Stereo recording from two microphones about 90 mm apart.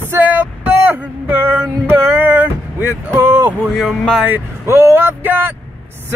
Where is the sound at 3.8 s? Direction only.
Centre (ahead or behind).